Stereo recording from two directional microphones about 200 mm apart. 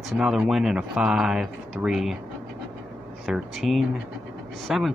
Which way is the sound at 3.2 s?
Centre (ahead or behind).